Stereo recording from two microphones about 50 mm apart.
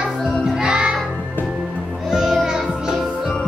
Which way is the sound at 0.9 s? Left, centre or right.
Centre.